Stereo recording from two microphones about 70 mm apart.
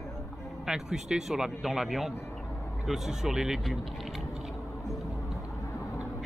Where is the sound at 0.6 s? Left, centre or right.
Centre.